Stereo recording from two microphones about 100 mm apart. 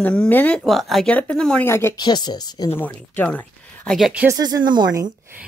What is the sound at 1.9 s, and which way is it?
Speech, 45° left (ahead or behind).